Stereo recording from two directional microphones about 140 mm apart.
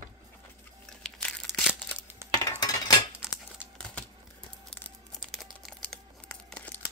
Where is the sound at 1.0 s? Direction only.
5° left (ahead or behind).